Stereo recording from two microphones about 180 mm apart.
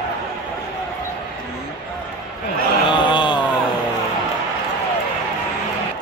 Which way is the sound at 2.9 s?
25° left (ahead or behind).